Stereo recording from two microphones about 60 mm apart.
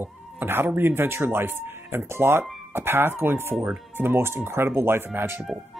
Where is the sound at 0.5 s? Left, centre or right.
Right.